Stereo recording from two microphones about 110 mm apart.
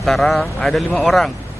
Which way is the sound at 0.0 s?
Centre (ahead or behind).